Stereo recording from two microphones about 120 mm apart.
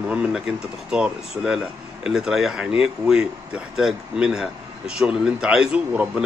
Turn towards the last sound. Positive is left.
turn(degrees=-5)  # may be behind; listen again after turning